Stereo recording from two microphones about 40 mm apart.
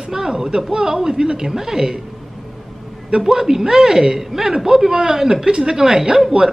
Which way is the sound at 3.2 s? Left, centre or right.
Centre.